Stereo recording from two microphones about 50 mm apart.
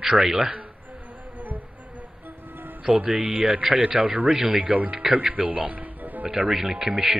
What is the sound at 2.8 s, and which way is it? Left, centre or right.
Speech, right.